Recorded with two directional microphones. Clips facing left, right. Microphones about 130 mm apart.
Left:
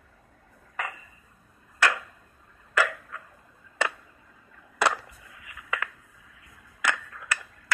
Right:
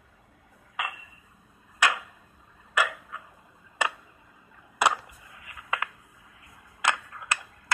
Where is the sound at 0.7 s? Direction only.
10° right (ahead or behind).